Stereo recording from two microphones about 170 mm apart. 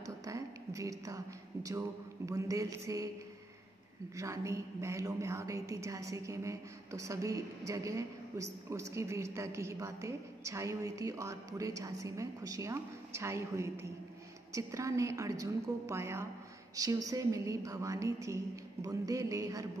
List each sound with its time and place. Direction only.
0.0 s a woman's voice: 20° right (ahead or behind)
4.2 s a woman's voice: 15° right (ahead or behind)